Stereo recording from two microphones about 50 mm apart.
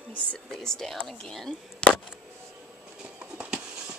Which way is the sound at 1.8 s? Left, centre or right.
Left.